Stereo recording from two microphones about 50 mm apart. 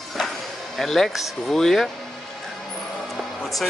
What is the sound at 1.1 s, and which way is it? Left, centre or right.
Speech, centre.